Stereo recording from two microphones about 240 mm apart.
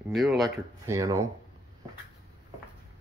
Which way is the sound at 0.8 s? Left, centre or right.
Centre.